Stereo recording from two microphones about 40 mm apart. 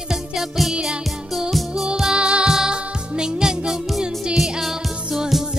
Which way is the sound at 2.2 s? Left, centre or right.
Right.